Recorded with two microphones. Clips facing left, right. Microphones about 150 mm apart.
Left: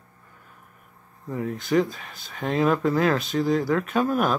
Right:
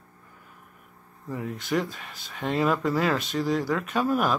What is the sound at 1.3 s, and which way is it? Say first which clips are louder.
Speech: left 5 dB; centre (ahead or behind).